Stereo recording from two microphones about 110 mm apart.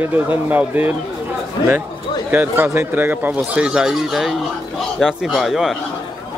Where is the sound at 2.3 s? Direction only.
15° right (ahead or behind).